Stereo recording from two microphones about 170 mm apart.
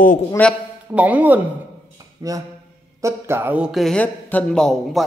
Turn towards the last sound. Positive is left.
turn(degrees=0)  # may be behind; listen again after turning